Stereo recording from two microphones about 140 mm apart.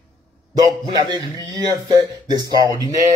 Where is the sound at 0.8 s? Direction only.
30° right (ahead or behind).